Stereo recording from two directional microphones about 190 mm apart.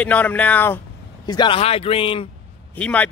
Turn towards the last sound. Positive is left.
turn(degrees=5)  # may be behind; listen again after turning